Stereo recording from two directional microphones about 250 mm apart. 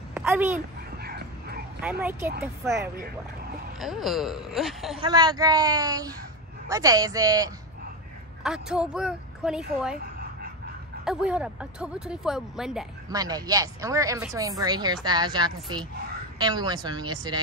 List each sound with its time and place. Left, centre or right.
0.1 s a sound: centre
1.0 s a sound: right
1.8 s speech: centre
3.8 s speech: centre
5.0 s speech: centre
8.5 s speech: centre
11.1 s speech: centre
13.1 s speech: centre